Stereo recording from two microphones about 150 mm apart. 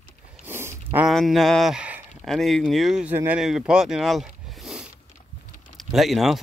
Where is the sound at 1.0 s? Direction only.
Centre (ahead or behind).